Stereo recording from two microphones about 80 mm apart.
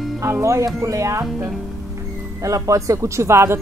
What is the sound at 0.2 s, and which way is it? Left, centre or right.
A woman's voice, right.